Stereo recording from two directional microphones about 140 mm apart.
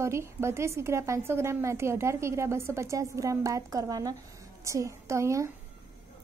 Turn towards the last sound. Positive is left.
turn(degrees=-20)  # may be behind; listen again after turning